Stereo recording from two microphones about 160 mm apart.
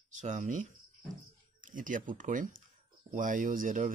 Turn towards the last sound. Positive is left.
turn(degrees=-55)  # may be behind; listen again after turning